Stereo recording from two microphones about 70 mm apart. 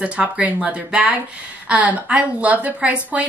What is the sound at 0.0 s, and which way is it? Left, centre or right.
Speech, centre.